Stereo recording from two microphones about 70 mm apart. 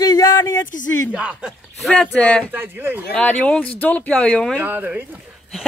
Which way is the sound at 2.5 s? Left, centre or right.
Right.